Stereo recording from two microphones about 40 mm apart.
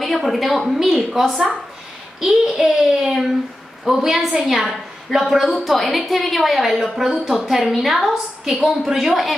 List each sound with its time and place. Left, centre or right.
0.0 s a woman's voice: centre
2.4 s a child's voice: centre